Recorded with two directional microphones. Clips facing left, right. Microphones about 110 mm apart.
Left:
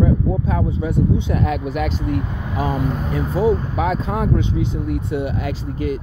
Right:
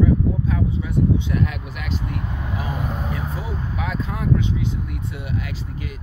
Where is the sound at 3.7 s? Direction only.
40° left (ahead or behind).